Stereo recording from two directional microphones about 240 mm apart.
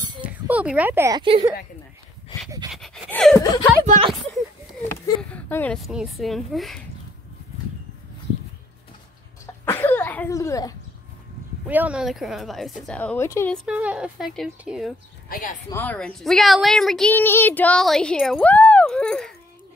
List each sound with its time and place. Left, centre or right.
0.2 s speech: centre
2.7 s dog: centre
3.8 s a sound: right
5.0 s a woman's voice: centre
9.7 s cough: centre
11.6 s a woman's voice: centre
13.7 s a woman's voice: centre
15.2 s speech: left
15.7 s a woman's voice: centre